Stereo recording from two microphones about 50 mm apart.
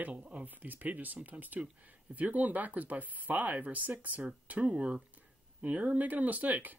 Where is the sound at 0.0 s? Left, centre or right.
Right.